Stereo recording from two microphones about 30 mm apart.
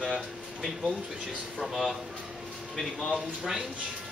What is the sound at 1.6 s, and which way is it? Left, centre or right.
Speech, centre.